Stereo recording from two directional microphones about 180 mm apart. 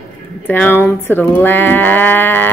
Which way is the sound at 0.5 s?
10° left (ahead or behind).